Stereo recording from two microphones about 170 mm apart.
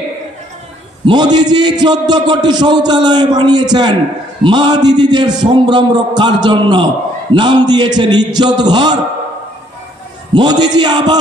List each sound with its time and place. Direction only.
1.0 s a man's voice: 25° right (ahead or behind)
10.3 s a man's voice: 25° right (ahead or behind)